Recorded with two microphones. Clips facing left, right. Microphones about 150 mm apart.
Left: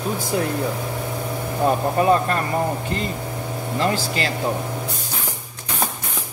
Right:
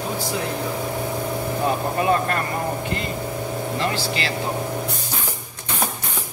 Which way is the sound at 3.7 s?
40° left (ahead or behind).